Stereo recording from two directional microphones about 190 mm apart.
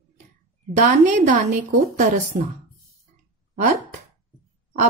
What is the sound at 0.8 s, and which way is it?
Speech, 45° right (ahead or behind).